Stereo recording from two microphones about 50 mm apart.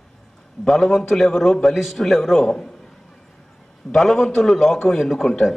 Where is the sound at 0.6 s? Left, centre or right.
Centre.